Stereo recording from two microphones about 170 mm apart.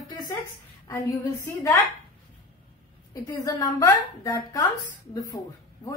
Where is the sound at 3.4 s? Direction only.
20° left (ahead or behind).